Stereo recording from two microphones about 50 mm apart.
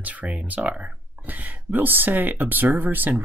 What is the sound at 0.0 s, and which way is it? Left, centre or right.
Speech, right.